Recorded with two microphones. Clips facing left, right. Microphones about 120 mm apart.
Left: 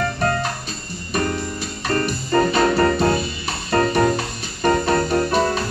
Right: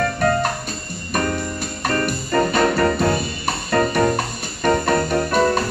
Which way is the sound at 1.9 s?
55° right (ahead or behind).